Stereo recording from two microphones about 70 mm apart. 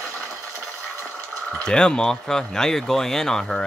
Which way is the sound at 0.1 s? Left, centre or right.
Centre.